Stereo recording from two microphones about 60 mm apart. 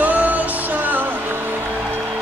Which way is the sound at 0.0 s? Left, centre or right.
Right.